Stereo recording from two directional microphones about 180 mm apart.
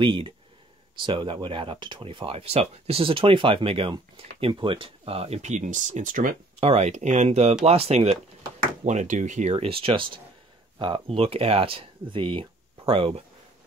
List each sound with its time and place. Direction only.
0.0 s speech: 30° right (ahead or behind); by 6.3 s 50° right (ahead or behind)
6.6 s speech: 35° right (ahead or behind)